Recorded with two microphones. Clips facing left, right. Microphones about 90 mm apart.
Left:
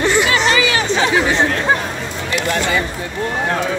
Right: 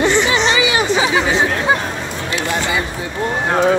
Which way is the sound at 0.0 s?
5° left (ahead or behind).